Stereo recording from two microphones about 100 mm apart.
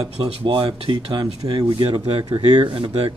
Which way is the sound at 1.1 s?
40° right (ahead or behind).